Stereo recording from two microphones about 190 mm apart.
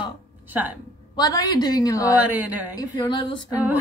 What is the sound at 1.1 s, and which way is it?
Speech, 20° left (ahead or behind).